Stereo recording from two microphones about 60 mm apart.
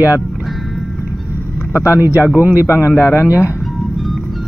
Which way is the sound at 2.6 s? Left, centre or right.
Left.